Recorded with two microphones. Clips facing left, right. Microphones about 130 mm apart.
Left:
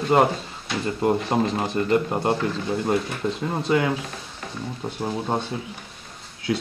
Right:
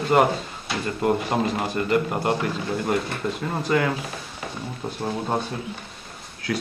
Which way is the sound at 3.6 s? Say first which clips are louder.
Left 1 dB; 20° left (ahead or behind).